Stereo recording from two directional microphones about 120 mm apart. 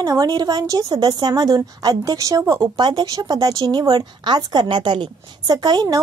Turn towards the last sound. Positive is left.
turn(degrees=-35)  # may be behind; listen again after turning